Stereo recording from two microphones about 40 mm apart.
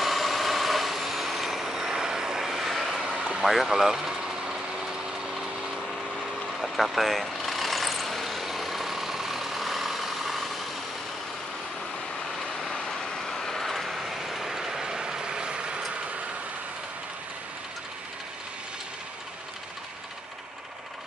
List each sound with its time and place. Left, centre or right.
0.0 s vehicle: centre
2.4 s vehicle: centre
3.0 s vehicle: centre
3.4 s speech: centre
3.7 s vehicle: centre
6.6 s vehicle: centre
12.4 s vehicle: centre; by 15.8 s right